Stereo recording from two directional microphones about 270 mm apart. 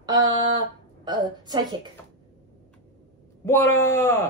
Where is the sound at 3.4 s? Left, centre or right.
Centre.